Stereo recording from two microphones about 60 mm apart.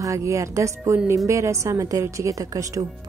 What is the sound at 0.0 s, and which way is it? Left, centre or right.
A woman's voice, right.